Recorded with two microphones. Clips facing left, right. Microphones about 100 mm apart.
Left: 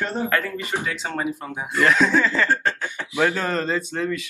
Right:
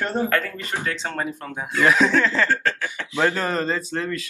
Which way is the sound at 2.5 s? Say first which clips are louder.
Even; 20° left (ahead or behind).